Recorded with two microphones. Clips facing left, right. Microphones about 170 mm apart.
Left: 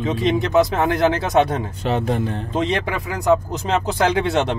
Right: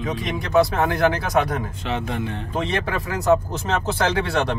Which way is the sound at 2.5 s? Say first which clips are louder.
Left 2 dB; 20° left (ahead or behind).